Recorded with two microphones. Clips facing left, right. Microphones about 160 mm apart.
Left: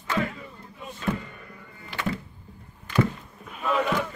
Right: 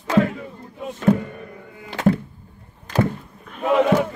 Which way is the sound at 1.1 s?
55° right (ahead or behind).